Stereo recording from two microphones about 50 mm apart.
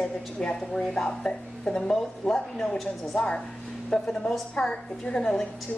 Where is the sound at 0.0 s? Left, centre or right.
Centre.